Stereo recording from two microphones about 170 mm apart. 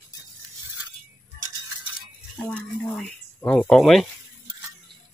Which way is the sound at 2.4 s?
5° left (ahead or behind).